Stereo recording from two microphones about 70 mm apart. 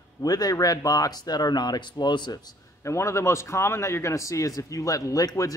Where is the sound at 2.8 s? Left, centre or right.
Left.